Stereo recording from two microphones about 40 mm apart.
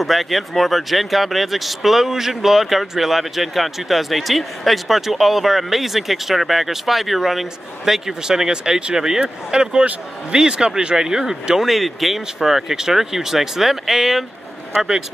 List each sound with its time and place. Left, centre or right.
0.0 s speech: centre